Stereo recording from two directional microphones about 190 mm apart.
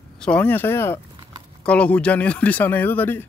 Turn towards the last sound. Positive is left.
turn(degrees=10)  # may be behind; listen again after turning